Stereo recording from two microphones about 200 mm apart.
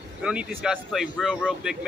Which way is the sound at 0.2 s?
5° right (ahead or behind).